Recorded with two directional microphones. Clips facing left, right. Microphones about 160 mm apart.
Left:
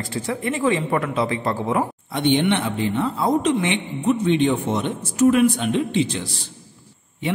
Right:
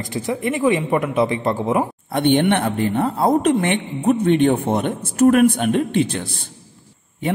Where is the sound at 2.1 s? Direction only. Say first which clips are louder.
Right 3 dB; 55° right (ahead or behind).